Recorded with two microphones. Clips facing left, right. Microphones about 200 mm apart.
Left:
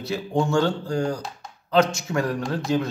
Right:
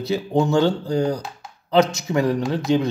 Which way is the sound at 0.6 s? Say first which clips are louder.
Right 4 dB; 20° right (ahead or behind).